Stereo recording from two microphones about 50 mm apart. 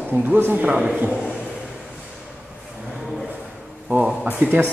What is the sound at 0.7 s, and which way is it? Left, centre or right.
Speech, right.